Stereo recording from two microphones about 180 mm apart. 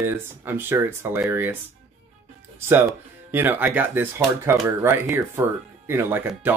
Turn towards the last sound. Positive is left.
turn(degrees=-10)  # may be behind; listen again after turning